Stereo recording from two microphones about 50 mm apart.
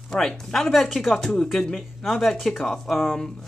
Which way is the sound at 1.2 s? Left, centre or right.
Centre.